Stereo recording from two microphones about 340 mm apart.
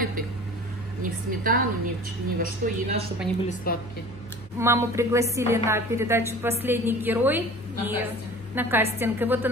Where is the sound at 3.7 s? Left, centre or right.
Left.